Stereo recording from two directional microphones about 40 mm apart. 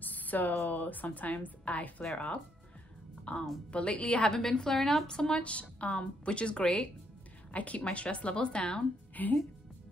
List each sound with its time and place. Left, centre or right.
0.0 s a woman's voice: left
4.3 s a woman's voice: centre
5.0 s a woman's voice: left
9.1 s a woman's voice: left